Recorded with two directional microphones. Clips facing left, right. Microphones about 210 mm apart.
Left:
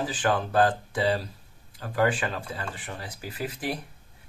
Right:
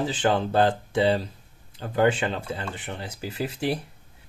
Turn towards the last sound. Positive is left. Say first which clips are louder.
# right 4 dB
turn(degrees=-25)  # may be behind; listen again after turning